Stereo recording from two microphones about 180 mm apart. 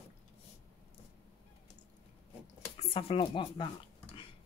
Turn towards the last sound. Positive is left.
turn(degrees=30)  # may be behind; listen again after turning